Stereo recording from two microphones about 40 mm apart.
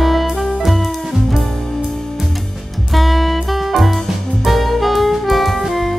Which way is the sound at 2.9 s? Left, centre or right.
Centre.